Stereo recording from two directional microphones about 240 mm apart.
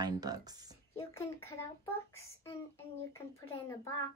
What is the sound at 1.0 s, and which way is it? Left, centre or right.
Speech, centre.